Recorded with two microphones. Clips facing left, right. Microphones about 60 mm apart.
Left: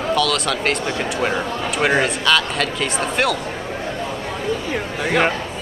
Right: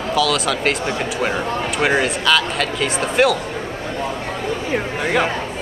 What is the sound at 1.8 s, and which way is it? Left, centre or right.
Speech, centre.